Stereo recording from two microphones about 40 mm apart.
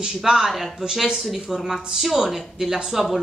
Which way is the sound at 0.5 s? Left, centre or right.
Centre.